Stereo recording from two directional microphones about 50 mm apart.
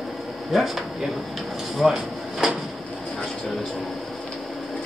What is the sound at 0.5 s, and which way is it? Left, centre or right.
Speech, centre.